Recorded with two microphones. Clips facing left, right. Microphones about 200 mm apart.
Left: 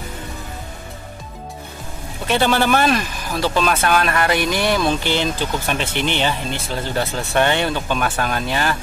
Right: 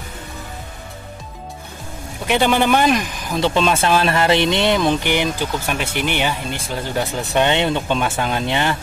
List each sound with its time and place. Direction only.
2.2 s speech: 15° right (ahead or behind)